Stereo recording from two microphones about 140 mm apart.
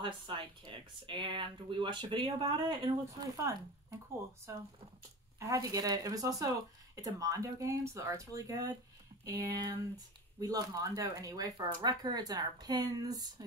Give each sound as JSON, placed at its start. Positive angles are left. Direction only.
{"t": 0.0, "sound": "speech", "side_deg": -40}
{"t": 5.4, "sound": "speech", "side_deg": -25}